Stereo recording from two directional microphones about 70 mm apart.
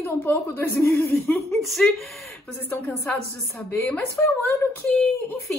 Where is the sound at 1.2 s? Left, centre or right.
Centre.